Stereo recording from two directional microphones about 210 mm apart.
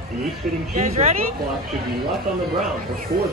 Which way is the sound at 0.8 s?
35° right (ahead or behind).